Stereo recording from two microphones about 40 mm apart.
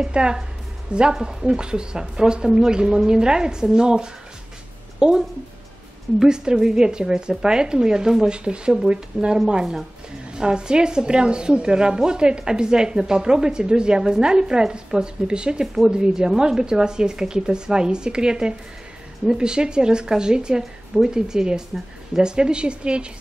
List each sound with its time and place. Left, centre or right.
0.0 s a woman's voice: right
6.2 s a woman's voice: centre
15.6 s a woman's voice: centre; by 23.0 s right